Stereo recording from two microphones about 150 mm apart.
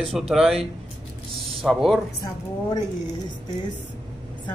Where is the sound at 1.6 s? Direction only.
Centre (ahead or behind).